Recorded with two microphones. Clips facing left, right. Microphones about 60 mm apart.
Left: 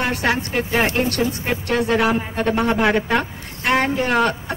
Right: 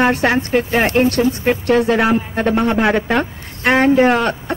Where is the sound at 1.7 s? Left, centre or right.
Right.